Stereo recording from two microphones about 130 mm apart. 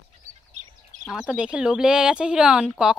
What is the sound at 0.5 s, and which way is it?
Bird, 70° right (ahead or behind).